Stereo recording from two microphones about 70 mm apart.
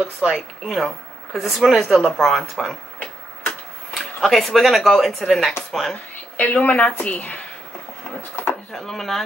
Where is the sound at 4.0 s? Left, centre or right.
Centre.